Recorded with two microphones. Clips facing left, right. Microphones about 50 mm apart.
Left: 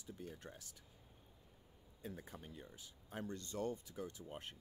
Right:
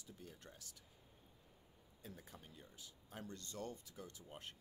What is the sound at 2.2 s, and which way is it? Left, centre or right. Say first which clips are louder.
Speech: left 5 dB; left.